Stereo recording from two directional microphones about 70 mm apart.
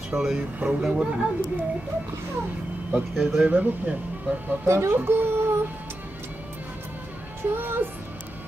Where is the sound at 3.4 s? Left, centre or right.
Right.